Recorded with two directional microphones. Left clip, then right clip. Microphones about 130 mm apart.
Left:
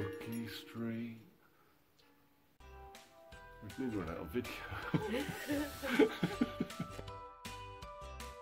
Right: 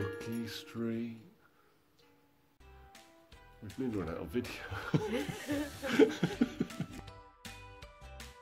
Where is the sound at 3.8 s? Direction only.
35° right (ahead or behind).